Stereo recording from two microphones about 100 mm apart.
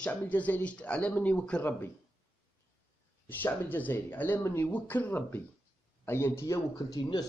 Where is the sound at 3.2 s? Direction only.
20° left (ahead or behind).